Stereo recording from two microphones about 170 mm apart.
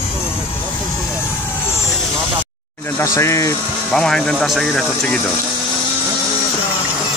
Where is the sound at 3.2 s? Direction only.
15° left (ahead or behind).